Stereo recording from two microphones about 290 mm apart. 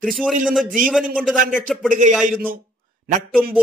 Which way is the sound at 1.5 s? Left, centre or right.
Centre.